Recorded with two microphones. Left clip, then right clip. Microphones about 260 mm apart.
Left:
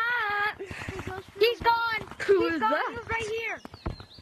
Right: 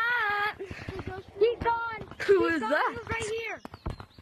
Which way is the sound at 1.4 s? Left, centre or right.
Left.